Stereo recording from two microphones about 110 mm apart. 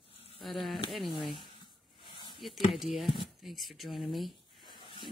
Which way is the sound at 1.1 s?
50° left (ahead or behind).